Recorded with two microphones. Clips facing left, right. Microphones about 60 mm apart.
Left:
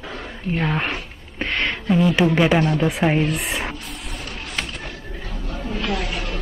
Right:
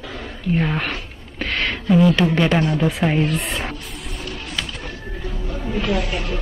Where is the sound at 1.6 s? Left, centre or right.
Centre.